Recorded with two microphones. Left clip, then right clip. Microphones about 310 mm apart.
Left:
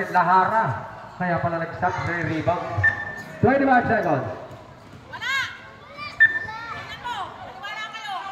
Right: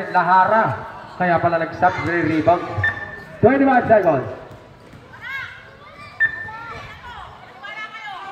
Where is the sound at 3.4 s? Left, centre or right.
Centre.